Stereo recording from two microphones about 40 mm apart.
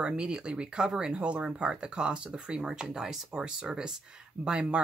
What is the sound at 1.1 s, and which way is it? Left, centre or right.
Speech, right.